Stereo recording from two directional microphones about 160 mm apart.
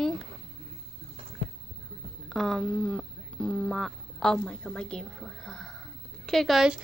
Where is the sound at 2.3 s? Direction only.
Centre (ahead or behind).